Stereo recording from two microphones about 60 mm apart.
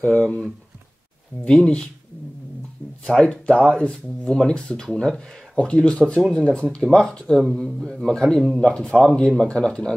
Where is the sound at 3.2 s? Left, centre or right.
Centre.